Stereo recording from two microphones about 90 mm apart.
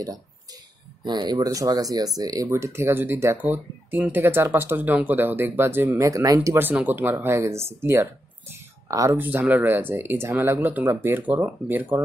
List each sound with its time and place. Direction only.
1.0 s speech: 50° right (ahead or behind)
2.5 s speech: 30° right (ahead or behind)
5.9 s speech: 40° right (ahead or behind)
6.5 s speech: 20° right (ahead or behind); by 9.2 s 35° right (ahead or behind)
9.2 s speech: 20° right (ahead or behind)